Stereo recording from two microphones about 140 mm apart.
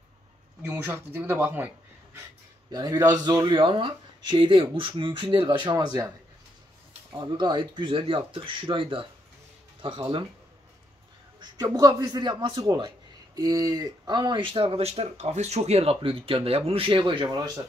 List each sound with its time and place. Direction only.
0.6 s speech: 15° right (ahead or behind)
2.7 s speech: 30° right (ahead or behind)
7.2 s speech: 30° right (ahead or behind)
11.3 s speech: 25° right (ahead or behind)